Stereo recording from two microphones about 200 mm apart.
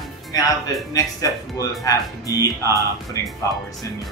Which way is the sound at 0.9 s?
15° left (ahead or behind).